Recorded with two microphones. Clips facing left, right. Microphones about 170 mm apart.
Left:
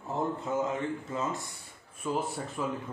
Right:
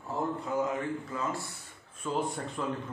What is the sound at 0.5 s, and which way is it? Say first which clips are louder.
Speech: right 1 dB; 25° left (ahead or behind).